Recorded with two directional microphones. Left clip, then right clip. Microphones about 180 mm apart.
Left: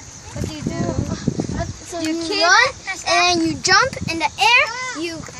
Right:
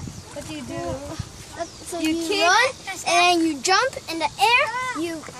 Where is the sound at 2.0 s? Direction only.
Centre (ahead or behind).